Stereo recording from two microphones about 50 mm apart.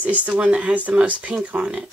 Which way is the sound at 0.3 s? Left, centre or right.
Right.